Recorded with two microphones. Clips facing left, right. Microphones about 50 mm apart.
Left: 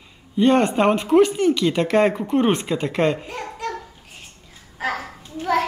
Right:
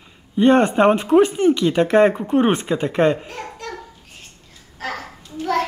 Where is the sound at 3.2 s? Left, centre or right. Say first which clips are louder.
Left 2 dB; centre.